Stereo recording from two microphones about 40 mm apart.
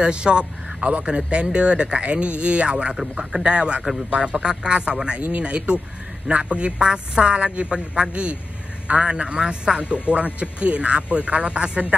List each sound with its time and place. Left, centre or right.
0.0 s a man's voice: right